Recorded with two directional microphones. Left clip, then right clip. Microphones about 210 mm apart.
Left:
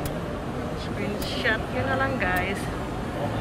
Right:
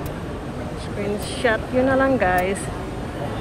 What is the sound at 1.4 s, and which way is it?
Speech, 10° right (ahead or behind).